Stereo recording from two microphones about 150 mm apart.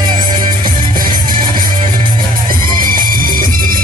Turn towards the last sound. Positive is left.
turn(degrees=-70)  # may be behind; listen again after turning